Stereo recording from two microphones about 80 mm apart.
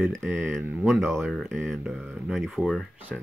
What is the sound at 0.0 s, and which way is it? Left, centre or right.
Speech, centre.